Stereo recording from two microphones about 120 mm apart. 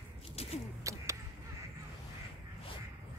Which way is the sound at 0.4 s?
60° left (ahead or behind).